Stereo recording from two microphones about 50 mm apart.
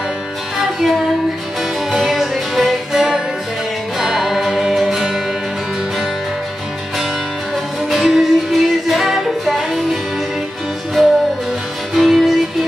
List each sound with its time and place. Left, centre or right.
0.6 s music: centre
7.9 s music: centre
11.0 s music: centre